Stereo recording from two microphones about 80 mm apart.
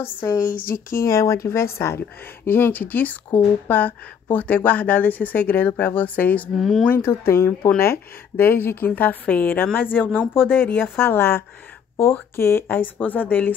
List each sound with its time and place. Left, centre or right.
0.7 s a woman's voice: left; by 6.5 s centre
6.5 s speech: centre
6.9 s speech: left